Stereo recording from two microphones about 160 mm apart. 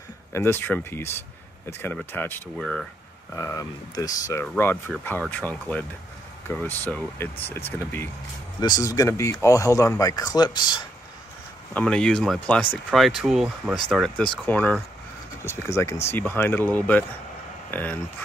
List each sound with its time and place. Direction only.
0.3 s speech: 15° left (ahead or behind)
2.5 s speech: centre (ahead or behind)
3.3 s speech: 20° left (ahead or behind)
8.5 s speech: 25° left (ahead or behind)
11.7 s speech: 5° left (ahead or behind)